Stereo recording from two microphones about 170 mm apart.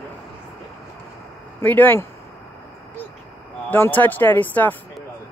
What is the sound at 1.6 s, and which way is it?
Speech, 10° left (ahead or behind).